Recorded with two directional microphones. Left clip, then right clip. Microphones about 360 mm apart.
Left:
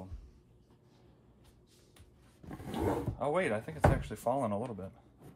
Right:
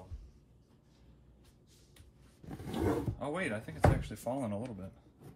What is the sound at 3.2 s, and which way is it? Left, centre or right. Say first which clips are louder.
Speech: left 5 dB; centre.